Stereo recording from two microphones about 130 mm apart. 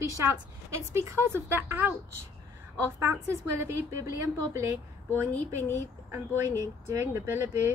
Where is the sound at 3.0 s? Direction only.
20° right (ahead or behind).